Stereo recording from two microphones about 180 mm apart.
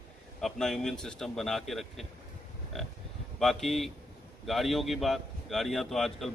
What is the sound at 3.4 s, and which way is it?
Speech, centre (ahead or behind).